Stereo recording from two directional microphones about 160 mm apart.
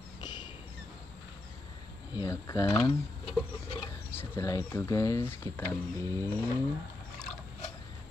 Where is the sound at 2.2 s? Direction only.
20° left (ahead or behind).